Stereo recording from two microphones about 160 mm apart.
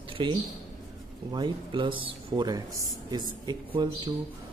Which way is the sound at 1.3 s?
30° right (ahead or behind).